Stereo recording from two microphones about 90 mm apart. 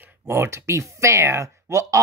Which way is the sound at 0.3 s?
30° right (ahead or behind).